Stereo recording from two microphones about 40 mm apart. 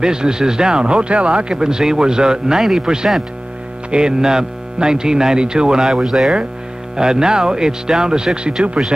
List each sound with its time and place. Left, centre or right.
0.0 s speech: centre
5.9 s speech: centre